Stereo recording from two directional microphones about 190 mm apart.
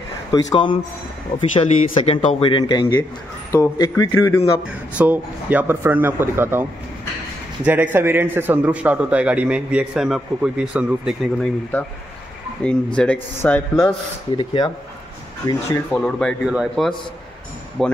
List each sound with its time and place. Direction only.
0.3 s speech: 25° left (ahead or behind)
4.9 s a man's voice: 10° right (ahead or behind)
12.6 s speech: 5° left (ahead or behind)
13.8 s speech: 25° left (ahead or behind)
16.0 s speech: 5° left (ahead or behind)